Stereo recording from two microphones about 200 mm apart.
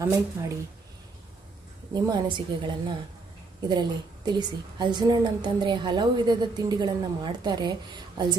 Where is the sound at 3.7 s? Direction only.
20° right (ahead or behind).